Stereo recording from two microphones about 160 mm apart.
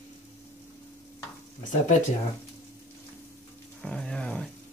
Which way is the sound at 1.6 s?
55° left (ahead or behind).